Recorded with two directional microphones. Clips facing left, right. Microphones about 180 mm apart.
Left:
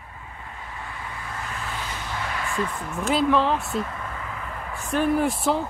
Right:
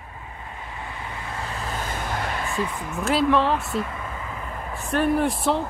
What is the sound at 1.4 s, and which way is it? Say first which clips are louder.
Vehicle: right 3 dB; 35° right (ahead or behind).